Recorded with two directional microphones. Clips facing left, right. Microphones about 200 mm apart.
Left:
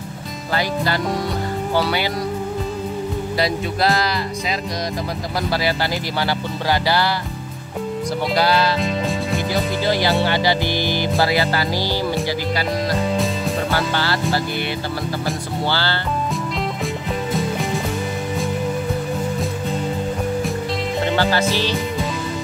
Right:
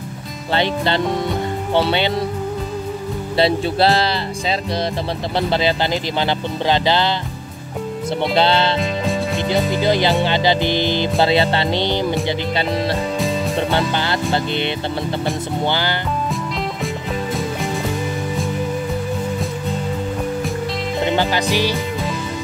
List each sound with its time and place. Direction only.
0.5 s music: 25° right (ahead or behind)
3.3 s speech: 30° right (ahead or behind)
5.5 s music: 20° right (ahead or behind)
8.4 s music: 25° right (ahead or behind)
13.7 s music: 20° right (ahead or behind)
15.6 s speech: 15° right (ahead or behind)
16.8 s music: centre (ahead or behind)
21.0 s speech: 15° right (ahead or behind)